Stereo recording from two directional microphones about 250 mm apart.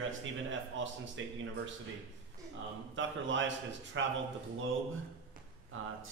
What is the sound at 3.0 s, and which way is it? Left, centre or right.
A man's voice, right.